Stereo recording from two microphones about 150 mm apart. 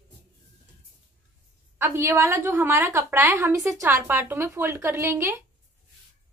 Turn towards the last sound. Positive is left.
turn(degrees=-15)  # may be behind; listen again after turning